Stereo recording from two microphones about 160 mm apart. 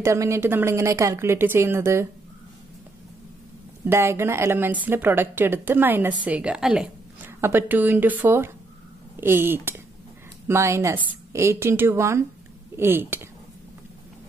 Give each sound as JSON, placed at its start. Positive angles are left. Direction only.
{"t": 0.0, "sound": "a woman's voice", "side_deg": -20}
{"t": 3.8, "sound": "a woman's voice", "side_deg": -15}